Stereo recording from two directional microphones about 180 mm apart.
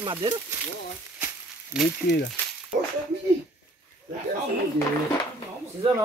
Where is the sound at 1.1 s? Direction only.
10° right (ahead or behind).